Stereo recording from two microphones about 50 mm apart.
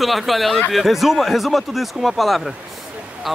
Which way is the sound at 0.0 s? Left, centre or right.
Centre.